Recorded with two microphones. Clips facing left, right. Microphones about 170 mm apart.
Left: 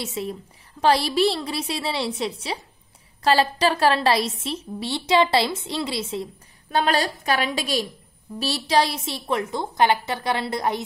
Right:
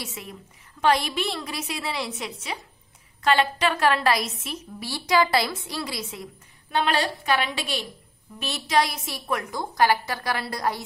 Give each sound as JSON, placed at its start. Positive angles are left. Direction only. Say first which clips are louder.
{"t": 0.0, "sound": "a woman's voice", "louder": "left 8 dB", "side_deg": 30}
{"t": 6.7, "sound": "a woman's voice", "louder": "left 2 dB", "side_deg": 40}